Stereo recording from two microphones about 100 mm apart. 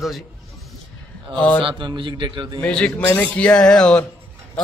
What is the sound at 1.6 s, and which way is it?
Speech, 55° right (ahead or behind).